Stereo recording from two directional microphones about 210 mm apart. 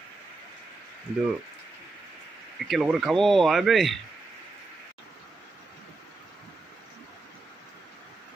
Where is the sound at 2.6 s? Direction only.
Centre (ahead or behind).